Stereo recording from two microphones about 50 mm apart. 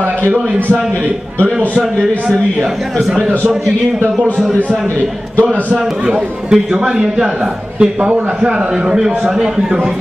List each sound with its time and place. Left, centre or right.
3.1 s a man's voice: centre
5.4 s a man's voice: right
6.0 s a man's voice: centre